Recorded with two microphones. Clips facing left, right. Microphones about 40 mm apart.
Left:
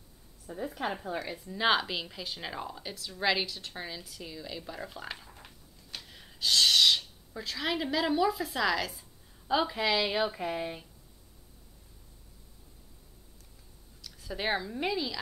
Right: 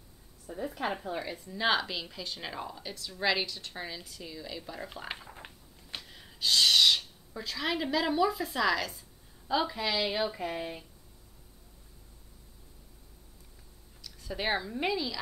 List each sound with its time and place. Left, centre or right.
0.5 s a woman's voice: left
1.4 s a woman's voice: centre
5.0 s a sound: right
6.0 s speech: centre
9.5 s speech: centre
14.0 s speech: centre